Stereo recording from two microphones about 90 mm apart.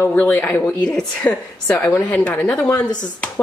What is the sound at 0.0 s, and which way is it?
A woman's voice, 20° left (ahead or behind).